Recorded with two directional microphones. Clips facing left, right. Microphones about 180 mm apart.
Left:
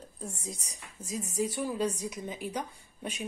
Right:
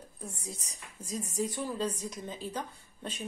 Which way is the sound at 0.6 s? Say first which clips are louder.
Left 1 dB; 10° left (ahead or behind).